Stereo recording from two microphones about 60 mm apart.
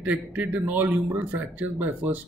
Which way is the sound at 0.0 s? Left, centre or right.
Right.